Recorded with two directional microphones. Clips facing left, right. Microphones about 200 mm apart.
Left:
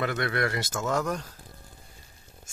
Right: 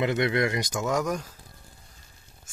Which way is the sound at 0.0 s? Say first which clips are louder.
Right 4 dB; 20° right (ahead or behind).